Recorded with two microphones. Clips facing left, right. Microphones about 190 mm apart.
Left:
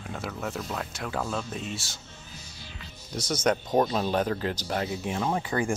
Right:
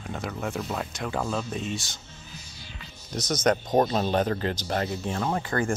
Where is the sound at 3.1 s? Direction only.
10° left (ahead or behind).